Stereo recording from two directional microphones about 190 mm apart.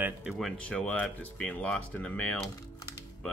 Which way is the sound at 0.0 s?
5° right (ahead or behind).